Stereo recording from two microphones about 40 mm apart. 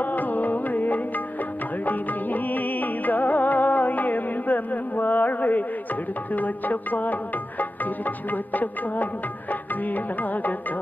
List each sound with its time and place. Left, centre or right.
0.0 s music: left